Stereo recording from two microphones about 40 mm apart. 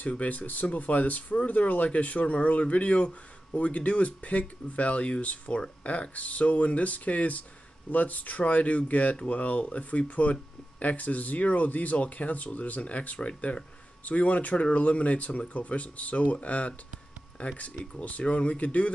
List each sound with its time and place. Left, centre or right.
0.2 s speech: left